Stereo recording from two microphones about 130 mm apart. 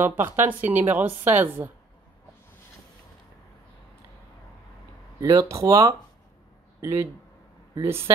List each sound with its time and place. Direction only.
0.0 s a woman's voice: 15° right (ahead or behind)
5.2 s speech: 25° right (ahead or behind)
7.7 s speech: 20° right (ahead or behind)